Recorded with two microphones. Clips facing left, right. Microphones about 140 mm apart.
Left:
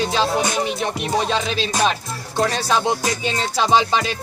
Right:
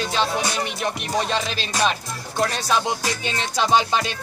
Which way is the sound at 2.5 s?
30° left (ahead or behind).